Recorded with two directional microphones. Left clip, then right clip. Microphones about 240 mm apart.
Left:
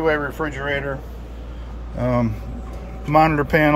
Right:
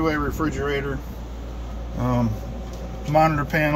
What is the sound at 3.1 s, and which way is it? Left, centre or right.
Speech, centre.